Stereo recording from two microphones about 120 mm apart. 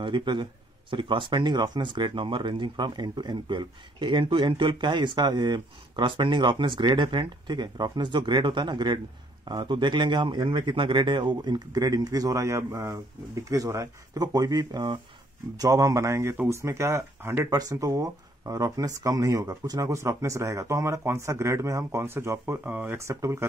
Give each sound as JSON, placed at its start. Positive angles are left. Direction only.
{"t": 0.0, "sound": "speech", "side_deg": -40}